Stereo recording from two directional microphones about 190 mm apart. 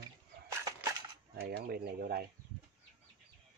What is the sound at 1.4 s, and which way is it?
Speech, 55° right (ahead or behind).